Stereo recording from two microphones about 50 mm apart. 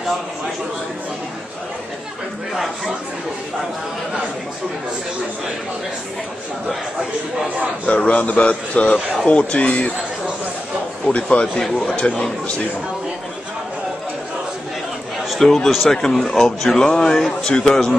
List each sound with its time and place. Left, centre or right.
7.9 s a man's voice: left
11.1 s a man's voice: left
15.4 s speech: centre